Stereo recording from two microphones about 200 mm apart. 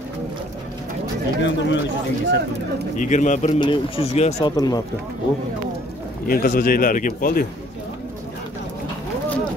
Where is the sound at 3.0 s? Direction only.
40° left (ahead or behind).